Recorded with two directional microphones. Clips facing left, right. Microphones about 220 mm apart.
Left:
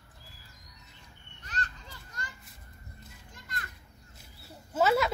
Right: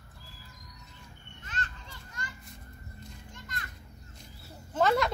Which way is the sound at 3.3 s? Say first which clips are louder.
Left 2 dB; 35° left (ahead or behind).